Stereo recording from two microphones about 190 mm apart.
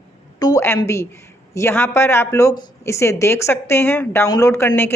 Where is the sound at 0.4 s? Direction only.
15° left (ahead or behind).